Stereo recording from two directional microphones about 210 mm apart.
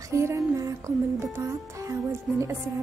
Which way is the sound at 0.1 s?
15° right (ahead or behind).